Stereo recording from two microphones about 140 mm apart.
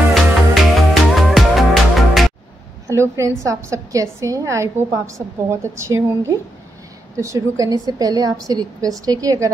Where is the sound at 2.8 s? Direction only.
20° right (ahead or behind).